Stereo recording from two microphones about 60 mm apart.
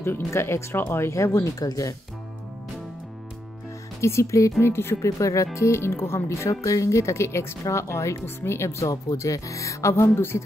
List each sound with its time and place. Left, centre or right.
0.0 s speech: left
4.0 s speech: left
4.6 s speech: left
5.0 s speech: left